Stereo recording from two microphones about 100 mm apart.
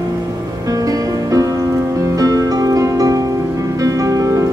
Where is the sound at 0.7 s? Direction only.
35° right (ahead or behind).